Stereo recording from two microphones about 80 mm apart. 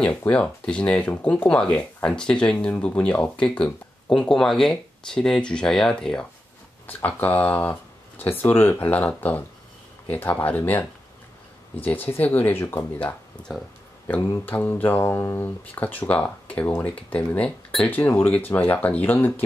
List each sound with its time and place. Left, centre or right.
0.3 s speech: centre
6.9 s speech: left
11.8 s speech: left